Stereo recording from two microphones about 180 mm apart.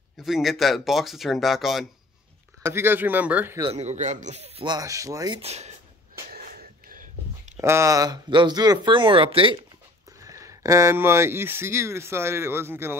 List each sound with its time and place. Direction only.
0.2 s speech: centre (ahead or behind)
2.6 s speech: 15° right (ahead or behind)
3.7 s a man's voice: 40° right (ahead or behind)
4.6 s speech: 20° right (ahead or behind)
5.4 s a man's voice: 35° right (ahead or behind)
6.3 s wheeze: 55° right (ahead or behind)
7.6 s speech: 15° right (ahead or behind)
10.2 s speech: 15° right (ahead or behind)